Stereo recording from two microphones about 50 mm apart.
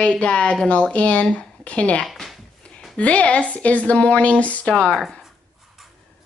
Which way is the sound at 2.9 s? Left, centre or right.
Left.